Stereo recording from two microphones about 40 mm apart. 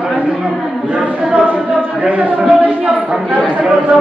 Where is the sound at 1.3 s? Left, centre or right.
Right.